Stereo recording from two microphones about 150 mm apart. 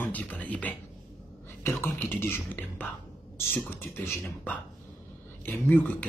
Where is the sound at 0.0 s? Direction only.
10° left (ahead or behind).